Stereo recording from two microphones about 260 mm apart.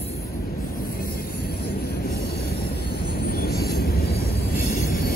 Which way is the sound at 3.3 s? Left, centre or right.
Left.